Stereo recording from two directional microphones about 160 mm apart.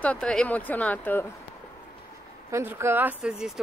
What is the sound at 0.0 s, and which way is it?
Speech, 5° left (ahead or behind).